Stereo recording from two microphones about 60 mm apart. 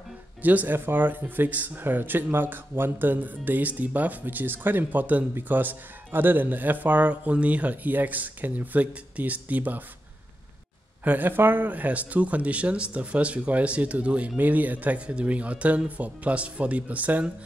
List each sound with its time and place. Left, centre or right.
0.4 s speech: right
11.1 s speech: right